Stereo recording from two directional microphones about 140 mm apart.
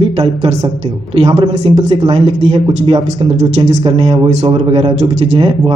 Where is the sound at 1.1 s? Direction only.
40° right (ahead or behind).